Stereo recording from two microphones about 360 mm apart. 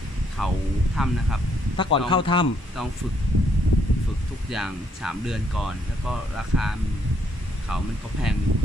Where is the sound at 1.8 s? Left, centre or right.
Centre.